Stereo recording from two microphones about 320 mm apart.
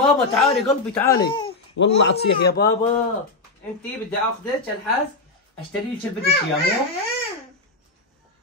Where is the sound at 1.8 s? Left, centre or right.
Left.